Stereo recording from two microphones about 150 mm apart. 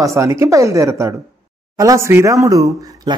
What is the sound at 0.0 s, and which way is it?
Speech, 20° right (ahead or behind).